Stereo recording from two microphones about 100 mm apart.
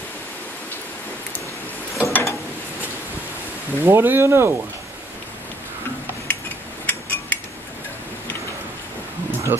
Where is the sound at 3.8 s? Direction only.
25° right (ahead or behind).